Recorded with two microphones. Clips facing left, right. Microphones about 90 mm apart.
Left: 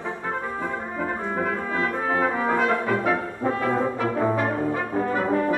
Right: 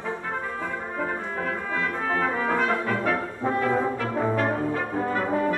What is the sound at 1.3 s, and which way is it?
Brass instrument, 15° left (ahead or behind).